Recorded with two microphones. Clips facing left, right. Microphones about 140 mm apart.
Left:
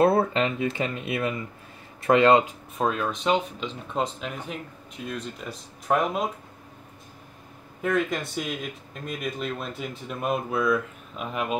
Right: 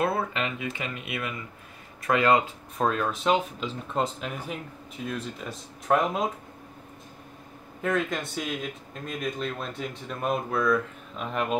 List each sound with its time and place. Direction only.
0.0 s speech: 30° left (ahead or behind)
2.8 s speech: centre (ahead or behind)
7.8 s speech: centre (ahead or behind)